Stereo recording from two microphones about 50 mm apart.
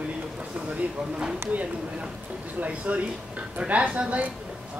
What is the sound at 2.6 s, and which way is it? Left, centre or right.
Speech, right.